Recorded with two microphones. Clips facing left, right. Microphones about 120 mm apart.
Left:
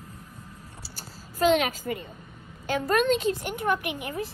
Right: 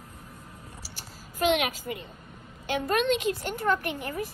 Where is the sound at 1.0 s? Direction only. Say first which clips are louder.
Left 3 dB; 35° left (ahead or behind).